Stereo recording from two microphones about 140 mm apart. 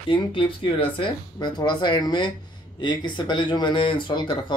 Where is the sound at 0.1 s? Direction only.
40° left (ahead or behind).